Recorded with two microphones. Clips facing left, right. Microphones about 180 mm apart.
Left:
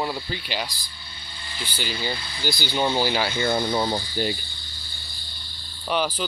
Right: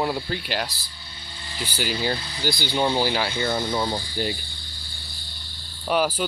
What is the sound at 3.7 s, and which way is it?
Speech, 30° left (ahead or behind).